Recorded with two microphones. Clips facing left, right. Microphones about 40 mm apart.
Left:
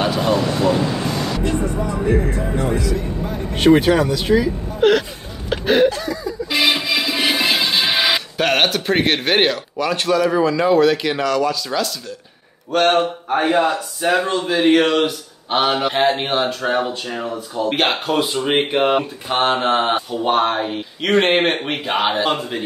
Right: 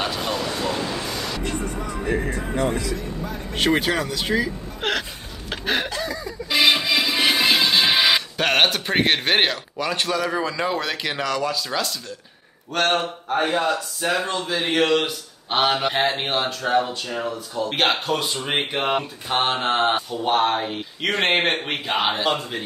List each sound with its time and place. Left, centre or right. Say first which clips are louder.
0.0 s a sound: left 7 dB; centre
0.3 s speech: left 8 dB; left
0.6 s speech: left 8 dB; centre
0.9 s vehicle: left 6 dB; left
1.4 s speech: left 7 dB; centre
3.5 s speech: left 7 dB; centre
5.5 s a sound: left 9 dB; centre
6.5 s music: even; centre
12.7 s speech: left 6 dB; centre
13.4 s speech: left 5 dB; left
14.5 s speech: left 5 dB; centre
16.6 s speech: left 1 dB; centre
17.7 s speech: left 2 dB; centre